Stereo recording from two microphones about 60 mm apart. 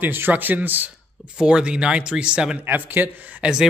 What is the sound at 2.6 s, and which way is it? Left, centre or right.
Speech, right.